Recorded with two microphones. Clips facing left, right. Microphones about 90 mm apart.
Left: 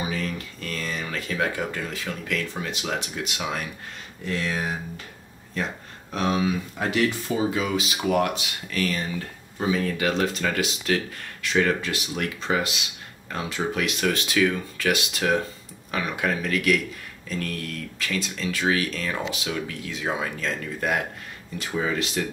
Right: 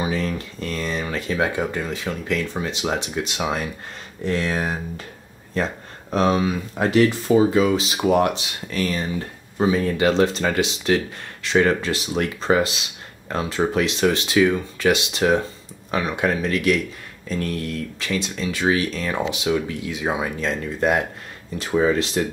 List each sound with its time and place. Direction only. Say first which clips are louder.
0.1 s speech: right 5 dB; 30° right (ahead or behind)
4.3 s speech: right 4 dB; 40° right (ahead or behind)
6.1 s speech: right 5 dB; 35° right (ahead or behind)
21.5 s speech: right 7 dB; 35° right (ahead or behind)